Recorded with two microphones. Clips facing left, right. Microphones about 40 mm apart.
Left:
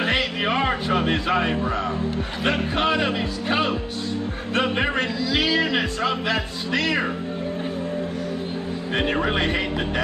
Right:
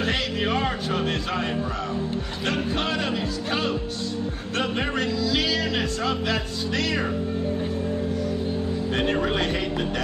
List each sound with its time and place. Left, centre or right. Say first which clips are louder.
0.0 s music: left 3 dB; left
2.4 s speech: left 4 dB; left
8.9 s speech: left 2 dB; left